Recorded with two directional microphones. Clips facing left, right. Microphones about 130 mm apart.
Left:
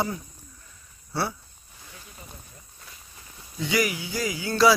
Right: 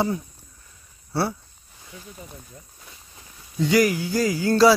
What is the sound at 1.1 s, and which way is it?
Speech, 35° right (ahead or behind).